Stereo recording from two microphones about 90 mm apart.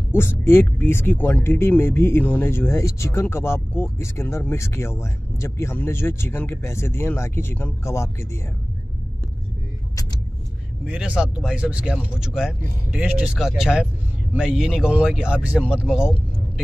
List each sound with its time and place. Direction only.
0.1 s speech: 25° left (ahead or behind)
10.9 s speech: 10° right (ahead or behind)